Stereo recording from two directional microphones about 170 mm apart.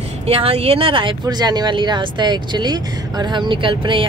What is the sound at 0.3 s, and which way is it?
Speech, 35° right (ahead or behind).